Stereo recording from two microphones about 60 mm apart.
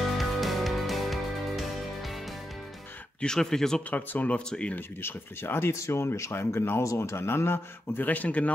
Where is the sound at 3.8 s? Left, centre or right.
Left.